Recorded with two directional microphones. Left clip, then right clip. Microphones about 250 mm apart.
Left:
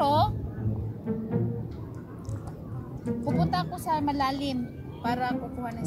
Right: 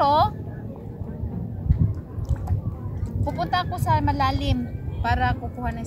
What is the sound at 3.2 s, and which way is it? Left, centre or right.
Speech, centre.